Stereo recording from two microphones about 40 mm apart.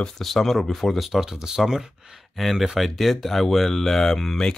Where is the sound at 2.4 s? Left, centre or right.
Centre.